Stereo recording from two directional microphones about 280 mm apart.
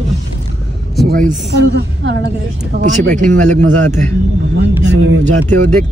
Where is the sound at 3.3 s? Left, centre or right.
Right.